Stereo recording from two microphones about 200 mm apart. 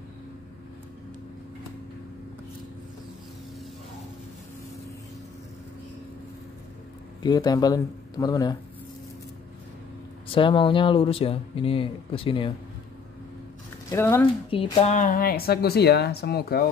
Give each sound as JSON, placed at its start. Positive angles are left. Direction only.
{"t": 7.2, "sound": "speech", "side_deg": 20}
{"t": 10.3, "sound": "speech", "side_deg": 25}
{"t": 13.8, "sound": "speech", "side_deg": 10}
{"t": 14.5, "sound": "speech", "side_deg": 25}
{"t": 15.0, "sound": "speech", "side_deg": 45}